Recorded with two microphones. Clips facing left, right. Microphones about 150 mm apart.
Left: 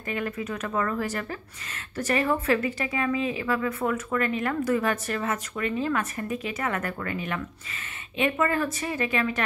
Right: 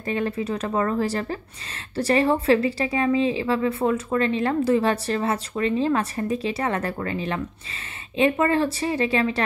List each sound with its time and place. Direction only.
0.0 s a woman's voice: 30° right (ahead or behind)